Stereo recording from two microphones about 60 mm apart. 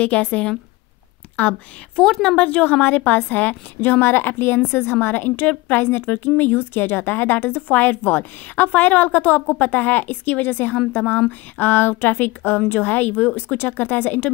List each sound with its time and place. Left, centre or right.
0.0 s a woman's voice: left